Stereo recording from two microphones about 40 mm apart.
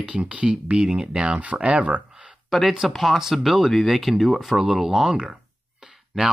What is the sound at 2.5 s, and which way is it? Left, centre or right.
Speech, centre.